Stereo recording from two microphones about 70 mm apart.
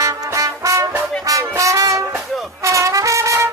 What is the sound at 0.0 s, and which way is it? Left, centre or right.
Brass instrument, right.